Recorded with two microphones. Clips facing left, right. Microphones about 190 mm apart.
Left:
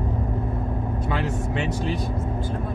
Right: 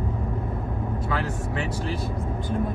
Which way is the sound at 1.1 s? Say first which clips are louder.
Left 3 dB; 25° left (ahead or behind).